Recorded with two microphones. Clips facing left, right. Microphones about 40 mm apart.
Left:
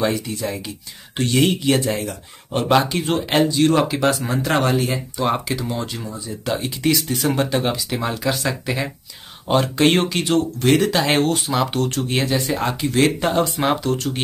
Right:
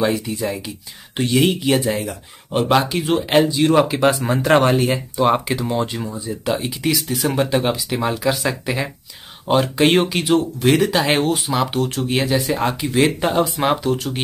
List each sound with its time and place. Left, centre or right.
0.0 s speech: centre; by 4.9 s right
4.9 s speech: centre
6.5 s speech: centre